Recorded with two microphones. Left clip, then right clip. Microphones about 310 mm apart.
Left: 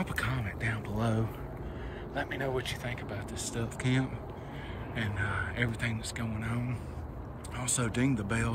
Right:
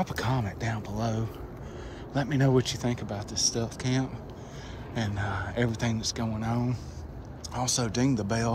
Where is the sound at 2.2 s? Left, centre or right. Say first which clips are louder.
Right 7 dB; right.